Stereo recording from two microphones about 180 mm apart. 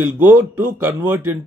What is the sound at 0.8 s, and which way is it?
Speech, 15° right (ahead or behind).